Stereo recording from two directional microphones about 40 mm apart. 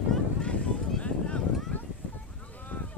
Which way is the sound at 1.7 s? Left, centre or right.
Left.